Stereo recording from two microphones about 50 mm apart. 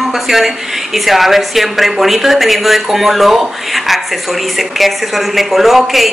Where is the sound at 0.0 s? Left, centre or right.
Centre.